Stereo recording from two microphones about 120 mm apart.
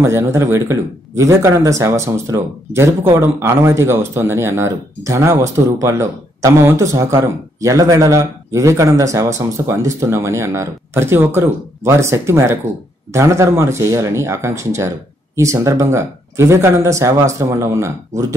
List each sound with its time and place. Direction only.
0.0 s speech: 20° right (ahead or behind)